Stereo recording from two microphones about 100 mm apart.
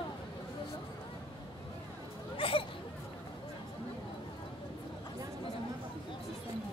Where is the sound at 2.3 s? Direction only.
65° left (ahead or behind).